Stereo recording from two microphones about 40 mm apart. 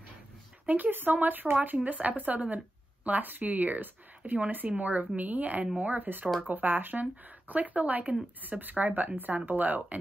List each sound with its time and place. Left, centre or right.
0.7 s speech: right
8.5 s speech: right